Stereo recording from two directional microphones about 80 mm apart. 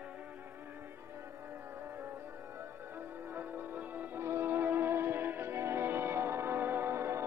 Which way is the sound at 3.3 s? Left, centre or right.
Right.